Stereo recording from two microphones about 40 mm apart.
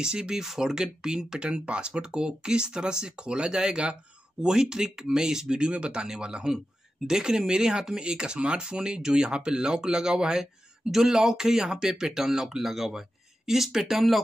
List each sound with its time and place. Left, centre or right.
0.0 s speech: right